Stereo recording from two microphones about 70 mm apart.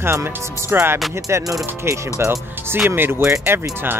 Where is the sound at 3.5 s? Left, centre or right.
Right.